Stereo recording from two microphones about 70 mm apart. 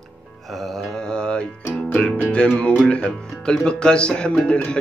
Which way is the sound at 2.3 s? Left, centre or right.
Centre.